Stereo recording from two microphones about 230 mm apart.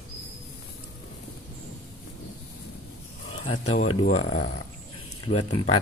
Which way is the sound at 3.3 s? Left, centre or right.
Left.